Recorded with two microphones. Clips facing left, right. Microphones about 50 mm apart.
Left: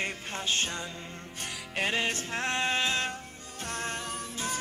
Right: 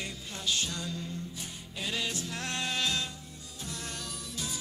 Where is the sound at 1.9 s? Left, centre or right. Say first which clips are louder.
Left 1 dB; left.